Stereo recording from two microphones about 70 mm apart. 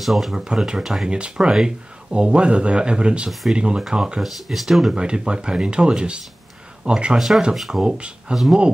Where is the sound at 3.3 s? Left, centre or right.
Centre.